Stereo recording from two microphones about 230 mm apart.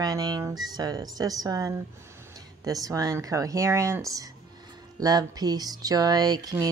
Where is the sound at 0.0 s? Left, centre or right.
Centre.